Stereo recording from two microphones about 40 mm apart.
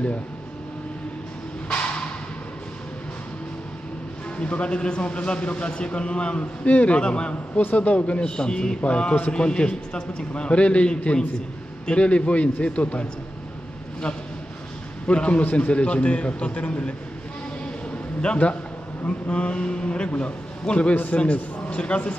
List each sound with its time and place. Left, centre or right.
1.7 s music: left
4.4 s speech: left
7.6 s a man's voice: left
8.4 s a man's voice: centre
15.0 s a man's voice: left
18.2 s a man's voice: left